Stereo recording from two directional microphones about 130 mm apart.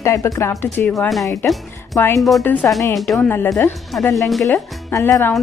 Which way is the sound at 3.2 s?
20° left (ahead or behind).